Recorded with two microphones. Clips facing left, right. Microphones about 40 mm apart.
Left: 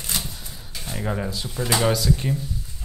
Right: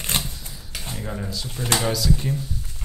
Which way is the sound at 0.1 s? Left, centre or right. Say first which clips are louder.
Right 3 dB; right.